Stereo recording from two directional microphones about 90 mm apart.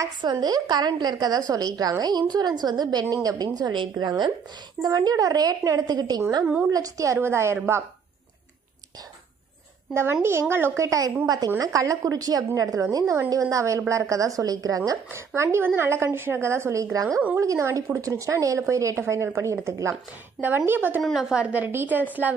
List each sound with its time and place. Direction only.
0.2 s a woman's voice: 50° right (ahead or behind)
4.8 s a woman's voice: 45° right (ahead or behind)
10.5 s a woman's voice: 30° right (ahead or behind)
20.4 s a woman's voice: 25° right (ahead or behind)
21.0 s a woman's voice: 5° right (ahead or behind); by 22.3 s 20° right (ahead or behind)